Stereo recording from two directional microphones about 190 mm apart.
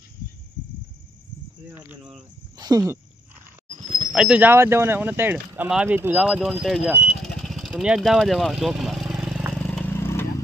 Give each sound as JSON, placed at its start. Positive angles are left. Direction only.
{"t": 1.7, "sound": "speech", "side_deg": -10}
{"t": 4.1, "sound": "speech", "side_deg": -5}
{"t": 9.9, "sound": "vehicle", "side_deg": 15}